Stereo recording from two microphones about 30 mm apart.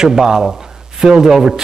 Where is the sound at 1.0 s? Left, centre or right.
Right.